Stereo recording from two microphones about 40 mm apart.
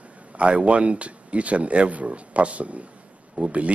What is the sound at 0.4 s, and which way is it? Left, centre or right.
Speech, right.